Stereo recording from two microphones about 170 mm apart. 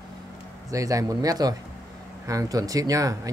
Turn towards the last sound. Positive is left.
turn(degrees=-20)  # may be behind; listen again after turning